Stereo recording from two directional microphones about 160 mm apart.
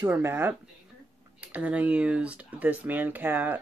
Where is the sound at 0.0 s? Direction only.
15° right (ahead or behind).